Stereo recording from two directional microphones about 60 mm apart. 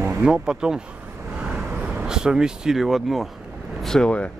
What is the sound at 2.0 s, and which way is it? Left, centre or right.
Speech, centre.